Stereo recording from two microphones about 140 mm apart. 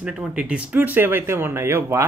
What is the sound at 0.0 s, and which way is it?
Speech, 5° right (ahead or behind).